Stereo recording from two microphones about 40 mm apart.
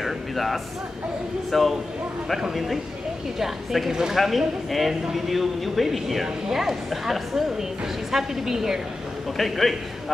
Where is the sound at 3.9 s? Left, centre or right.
Centre.